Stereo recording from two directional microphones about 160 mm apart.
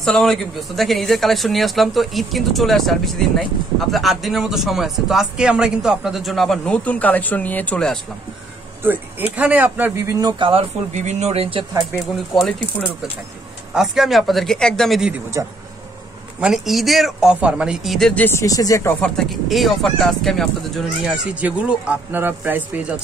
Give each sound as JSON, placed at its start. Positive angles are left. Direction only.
{"t": 0.0, "sound": "speech", "side_deg": 0}
{"t": 9.4, "sound": "speech", "side_deg": -10}
{"t": 10.4, "sound": "speech", "side_deg": -40}
{"t": 11.9, "sound": "speech", "side_deg": 0}
{"t": 13.7, "sound": "speech", "side_deg": 0}
{"t": 16.3, "sound": "speech", "side_deg": -5}
{"t": 19.0, "sound": "speech", "side_deg": 0}